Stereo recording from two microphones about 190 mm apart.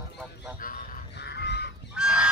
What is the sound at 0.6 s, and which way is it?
Goose, 45° left (ahead or behind).